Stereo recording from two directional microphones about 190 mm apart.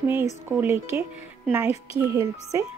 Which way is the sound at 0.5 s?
10° right (ahead or behind).